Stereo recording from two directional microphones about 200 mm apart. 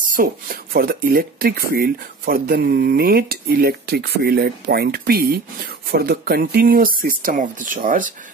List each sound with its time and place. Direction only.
0.0 s speech: 45° right (ahead or behind)